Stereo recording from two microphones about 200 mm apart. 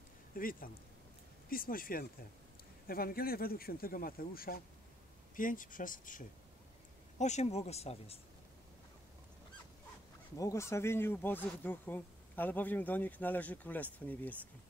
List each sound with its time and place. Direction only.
0.4 s speech: 45° left (ahead or behind)
10.3 s speech: 15° left (ahead or behind)